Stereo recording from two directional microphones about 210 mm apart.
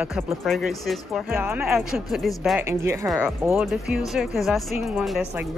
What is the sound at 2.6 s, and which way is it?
Speech, 15° right (ahead or behind).